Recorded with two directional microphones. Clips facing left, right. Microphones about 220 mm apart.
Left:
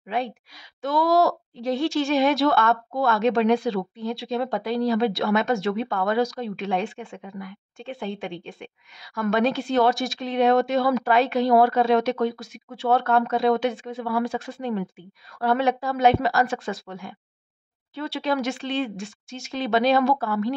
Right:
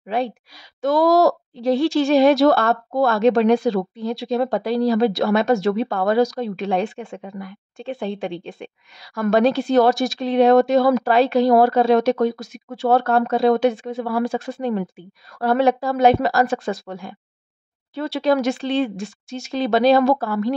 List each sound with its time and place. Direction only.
0.8 s speech: 40° right (ahead or behind)